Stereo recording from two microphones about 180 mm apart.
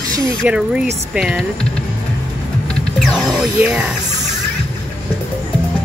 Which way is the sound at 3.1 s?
Centre (ahead or behind).